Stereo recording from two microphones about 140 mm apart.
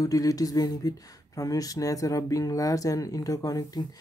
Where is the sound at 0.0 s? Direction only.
25° left (ahead or behind).